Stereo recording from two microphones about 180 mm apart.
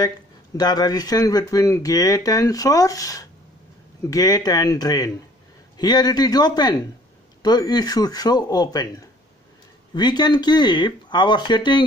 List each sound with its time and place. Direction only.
0.6 s speech: 20° left (ahead or behind)